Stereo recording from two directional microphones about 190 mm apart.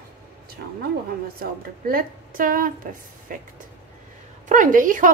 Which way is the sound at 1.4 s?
50° right (ahead or behind).